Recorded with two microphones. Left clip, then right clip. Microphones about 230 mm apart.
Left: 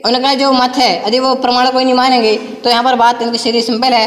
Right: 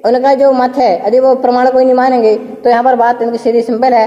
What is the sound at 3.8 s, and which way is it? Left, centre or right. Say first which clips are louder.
Speech: right 2 dB; left.